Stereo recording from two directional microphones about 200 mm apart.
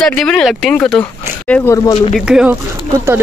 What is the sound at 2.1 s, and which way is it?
Speech, 5° right (ahead or behind).